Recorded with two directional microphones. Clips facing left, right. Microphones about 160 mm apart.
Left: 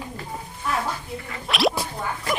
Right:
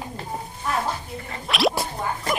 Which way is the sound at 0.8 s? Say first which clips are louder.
Right 1 dB; 30° right (ahead or behind).